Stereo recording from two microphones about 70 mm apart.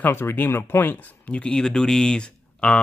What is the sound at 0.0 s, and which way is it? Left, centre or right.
Speech, left.